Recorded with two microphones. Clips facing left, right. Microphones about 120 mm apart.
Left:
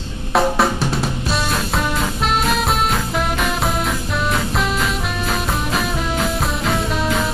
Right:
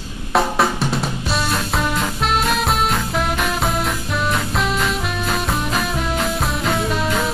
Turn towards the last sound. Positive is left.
turn(degrees=0)  # may be behind; listen again after turning